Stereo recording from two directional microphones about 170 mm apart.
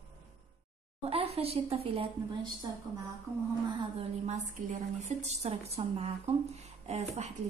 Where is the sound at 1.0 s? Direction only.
35° right (ahead or behind).